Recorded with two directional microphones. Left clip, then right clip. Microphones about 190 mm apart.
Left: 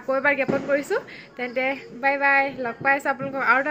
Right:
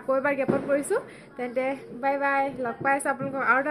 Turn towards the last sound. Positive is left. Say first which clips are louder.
# left 3 dB
turn(degrees=0)  # may be behind; listen again after turning